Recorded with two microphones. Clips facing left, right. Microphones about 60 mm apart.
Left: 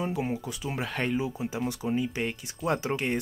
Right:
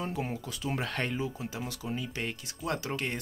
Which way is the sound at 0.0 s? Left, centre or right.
Centre.